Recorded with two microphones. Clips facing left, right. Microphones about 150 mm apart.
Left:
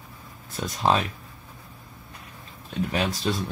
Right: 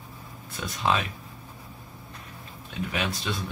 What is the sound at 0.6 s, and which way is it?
Speech, 40° left (ahead or behind).